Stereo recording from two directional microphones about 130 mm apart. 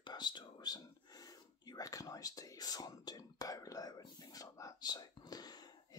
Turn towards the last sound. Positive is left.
turn(degrees=30)  # may be behind; listen again after turning